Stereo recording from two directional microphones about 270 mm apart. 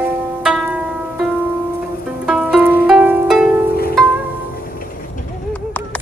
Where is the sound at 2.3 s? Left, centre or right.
Centre.